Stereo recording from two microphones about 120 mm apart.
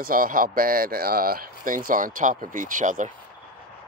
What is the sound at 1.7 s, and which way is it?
Speech, 90° right.